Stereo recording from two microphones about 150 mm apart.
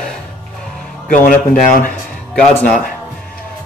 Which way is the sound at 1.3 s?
65° left (ahead or behind).